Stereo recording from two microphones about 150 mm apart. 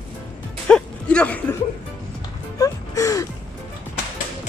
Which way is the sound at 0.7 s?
5° left (ahead or behind).